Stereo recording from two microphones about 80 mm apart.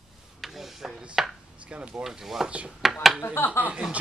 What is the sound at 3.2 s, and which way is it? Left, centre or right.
Speech, left.